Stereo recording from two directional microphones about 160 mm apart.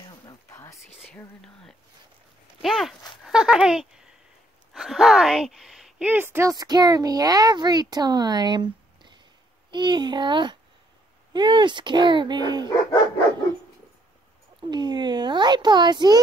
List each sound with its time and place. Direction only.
0.3 s a sound: 20° left (ahead or behind)
1.1 s whispering: 5° left (ahead or behind)
2.6 s speech: centre (ahead or behind)
3.3 s a sound: 5° right (ahead or behind)
6.5 s a child's voice: 25° right (ahead or behind)
14.6 s a child's voice: 30° right (ahead or behind)